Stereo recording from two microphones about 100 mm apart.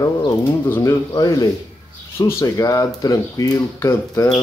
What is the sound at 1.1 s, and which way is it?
Speech, 40° left (ahead or behind).